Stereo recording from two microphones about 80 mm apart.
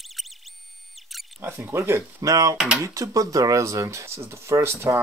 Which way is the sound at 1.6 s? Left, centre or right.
Right.